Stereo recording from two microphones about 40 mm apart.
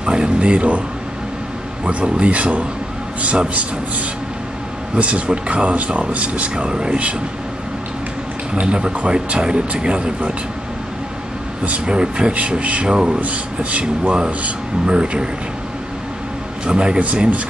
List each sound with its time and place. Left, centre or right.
0.0 s speech: right
2.0 s speech: right
4.9 s speech: right
6.5 s speech: right
8.5 s speech: right
11.8 s speech: right
12.8 s speech: centre
13.2 s speech: right
14.1 s speech: right
16.6 s speech: right
17.0 s speech: right